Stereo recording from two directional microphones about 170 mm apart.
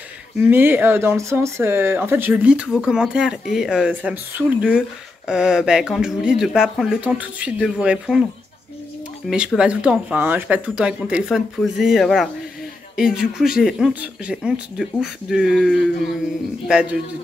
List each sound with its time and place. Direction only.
0.4 s speech: 10° right (ahead or behind)
9.3 s speech: 5° right (ahead or behind)